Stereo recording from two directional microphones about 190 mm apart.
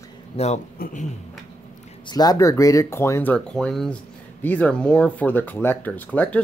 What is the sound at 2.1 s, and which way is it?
Speech, 20° left (ahead or behind).